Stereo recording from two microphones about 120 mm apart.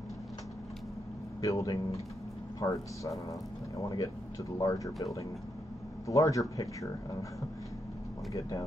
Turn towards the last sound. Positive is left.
turn(degrees=30)  # may be behind; listen again after turning